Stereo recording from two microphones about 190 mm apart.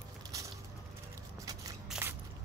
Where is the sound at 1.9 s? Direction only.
10° right (ahead or behind).